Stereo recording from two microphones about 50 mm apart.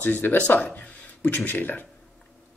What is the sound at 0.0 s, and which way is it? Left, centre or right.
Speech, left.